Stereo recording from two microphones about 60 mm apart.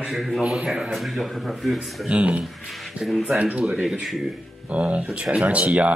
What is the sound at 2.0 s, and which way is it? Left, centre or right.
Speech, centre.